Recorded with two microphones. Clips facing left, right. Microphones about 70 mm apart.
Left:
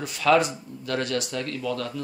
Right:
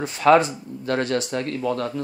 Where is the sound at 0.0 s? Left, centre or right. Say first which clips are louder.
Right 4 dB; right.